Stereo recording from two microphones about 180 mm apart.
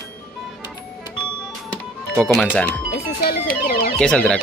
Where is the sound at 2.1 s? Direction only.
5° left (ahead or behind).